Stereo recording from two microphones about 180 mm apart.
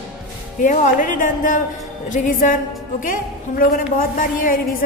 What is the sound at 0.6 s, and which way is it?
A woman's voice, 45° left (ahead or behind).